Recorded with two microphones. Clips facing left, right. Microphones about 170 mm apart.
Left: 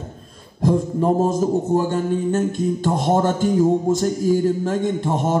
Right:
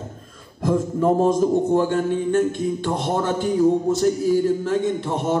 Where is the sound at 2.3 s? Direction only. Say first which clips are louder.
Even; 40° left (ahead or behind).